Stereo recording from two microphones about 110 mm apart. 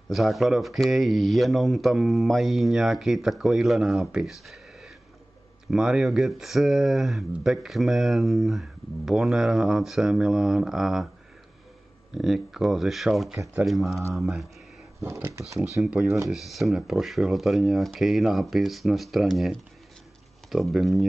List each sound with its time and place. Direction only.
0.1 s speech: centre (ahead or behind)
12.1 s speech: 5° right (ahead or behind)
15.0 s speech: 20° right (ahead or behind)
16.3 s speech: centre (ahead or behind)